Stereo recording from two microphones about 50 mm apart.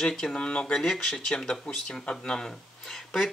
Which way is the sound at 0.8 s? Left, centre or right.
Centre.